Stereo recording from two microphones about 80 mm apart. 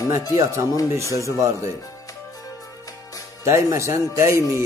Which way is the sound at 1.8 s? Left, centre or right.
Left.